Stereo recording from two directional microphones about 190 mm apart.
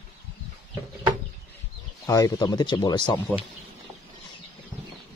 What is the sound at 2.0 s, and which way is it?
Speech, 20° left (ahead or behind).